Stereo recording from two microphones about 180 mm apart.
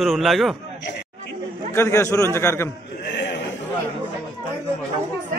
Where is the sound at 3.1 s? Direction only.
70° left (ahead or behind).